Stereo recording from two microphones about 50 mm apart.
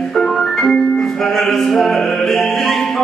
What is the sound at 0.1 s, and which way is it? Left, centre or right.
Music, centre.